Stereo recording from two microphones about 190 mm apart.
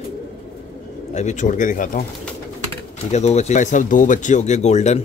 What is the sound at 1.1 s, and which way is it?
Speech, 40° left (ahead or behind).